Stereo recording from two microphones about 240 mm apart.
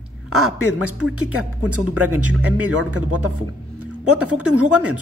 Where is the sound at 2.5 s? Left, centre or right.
Centre.